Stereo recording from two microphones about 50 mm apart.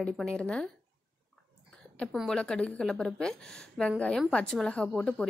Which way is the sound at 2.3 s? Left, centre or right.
Centre.